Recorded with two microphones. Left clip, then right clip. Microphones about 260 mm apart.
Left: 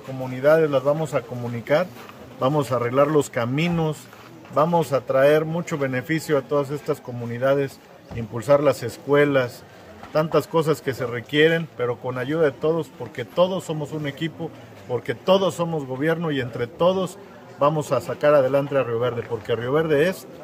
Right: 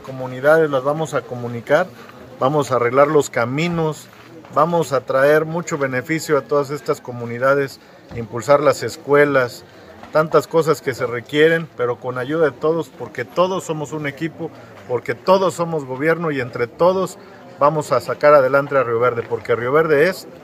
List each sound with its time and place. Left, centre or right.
0.3 s speech: centre
2.4 s speech: centre
13.3 s speech: right
14.2 s speech: centre